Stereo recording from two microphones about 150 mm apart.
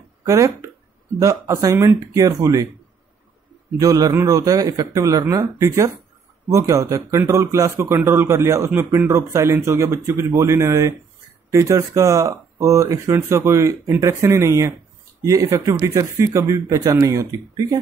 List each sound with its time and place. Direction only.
0.3 s speech: 20° right (ahead or behind)
3.8 s speech: 25° right (ahead or behind)